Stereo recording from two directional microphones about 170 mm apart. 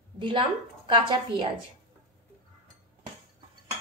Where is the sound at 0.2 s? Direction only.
30° right (ahead or behind).